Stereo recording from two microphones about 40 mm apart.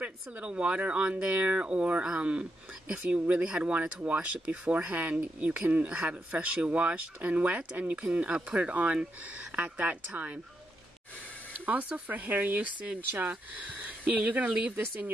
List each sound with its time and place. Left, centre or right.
0.0 s speech: right
0.5 s speech: right
3.0 s speech: right
3.3 s speech: right
3.9 s speech: right
5.7 s speech: right
11.6 s speech: right